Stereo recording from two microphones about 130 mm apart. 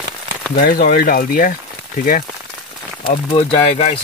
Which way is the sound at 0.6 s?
90° left.